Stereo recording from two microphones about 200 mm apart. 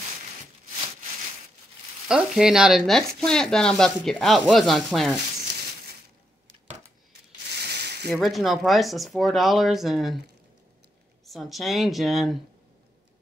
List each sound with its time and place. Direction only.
2.0 s speech: 5° right (ahead or behind)
7.5 s a sound: 55° right (ahead or behind)
8.1 s speech: centre (ahead or behind)
11.2 s speech: centre (ahead or behind)